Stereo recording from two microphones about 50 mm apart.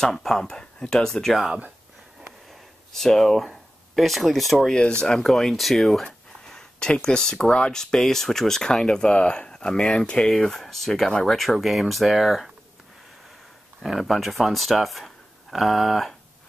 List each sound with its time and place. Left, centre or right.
0.0 s speech: centre
2.9 s speech: centre
4.7 s speech: centre
5.2 s speech: centre
10.3 s speech: centre
13.8 s speech: centre